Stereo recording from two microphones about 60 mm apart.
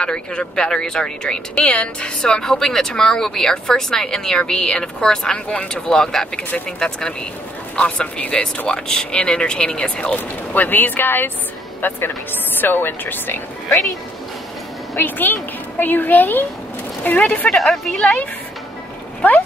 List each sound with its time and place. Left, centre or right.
0.0 s a woman's voice: centre; by 13.4 s left
15.0 s a woman's voice: left
17.5 s a woman's voice: centre
19.2 s speech: left